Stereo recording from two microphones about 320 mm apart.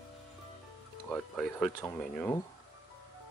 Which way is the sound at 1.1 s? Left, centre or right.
Centre.